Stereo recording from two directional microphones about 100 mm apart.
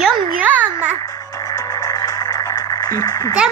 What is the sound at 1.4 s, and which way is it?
Music, 35° left (ahead or behind).